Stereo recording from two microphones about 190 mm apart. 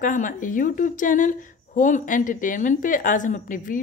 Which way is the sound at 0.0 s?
45° left (ahead or behind).